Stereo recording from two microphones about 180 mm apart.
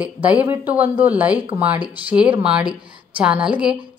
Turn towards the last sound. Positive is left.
turn(degrees=-5)  # may be behind; listen again after turning